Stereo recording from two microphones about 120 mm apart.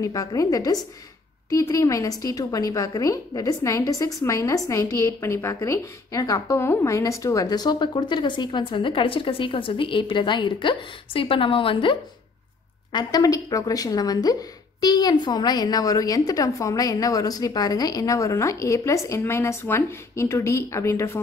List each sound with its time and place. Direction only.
0.0 s a woman's voice: 30° left (ahead or behind)
12.9 s a woman's voice: 30° left (ahead or behind)